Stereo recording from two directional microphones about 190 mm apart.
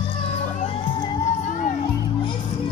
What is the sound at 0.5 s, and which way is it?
Music, 30° left (ahead or behind).